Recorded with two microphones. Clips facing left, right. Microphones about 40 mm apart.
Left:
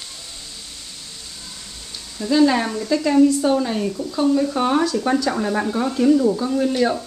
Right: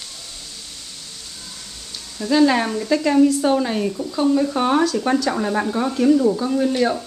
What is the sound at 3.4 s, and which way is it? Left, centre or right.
Speech, centre.